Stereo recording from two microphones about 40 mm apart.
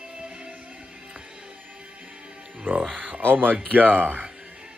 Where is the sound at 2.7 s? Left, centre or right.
Right.